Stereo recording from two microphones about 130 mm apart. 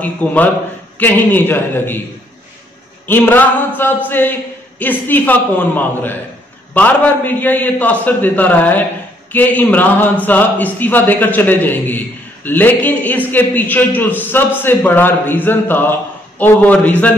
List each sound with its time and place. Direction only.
0.0 s a man's voice: 10° left (ahead or behind)
3.1 s a man's voice: 15° left (ahead or behind)